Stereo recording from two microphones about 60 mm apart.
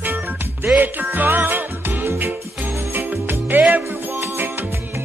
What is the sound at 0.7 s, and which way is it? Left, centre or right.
Music, right.